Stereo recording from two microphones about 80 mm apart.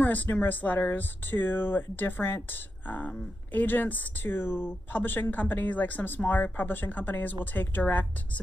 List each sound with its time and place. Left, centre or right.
0.0 s speech: left